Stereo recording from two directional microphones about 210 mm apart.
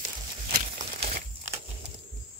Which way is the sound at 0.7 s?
35° right (ahead or behind).